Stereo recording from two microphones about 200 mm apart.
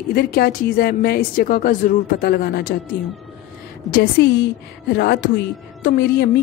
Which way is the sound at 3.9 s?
60° left (ahead or behind).